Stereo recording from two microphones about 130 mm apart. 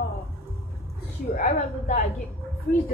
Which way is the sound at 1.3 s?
65° left (ahead or behind).